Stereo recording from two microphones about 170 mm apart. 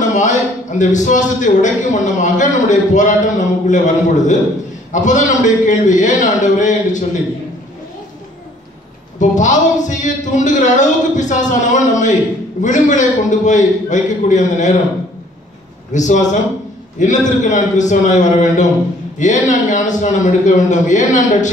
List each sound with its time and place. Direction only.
0.0 s a man's voice: 45° left (ahead or behind)
9.2 s a man's voice: 45° left (ahead or behind)
15.9 s a man's voice: 45° left (ahead or behind)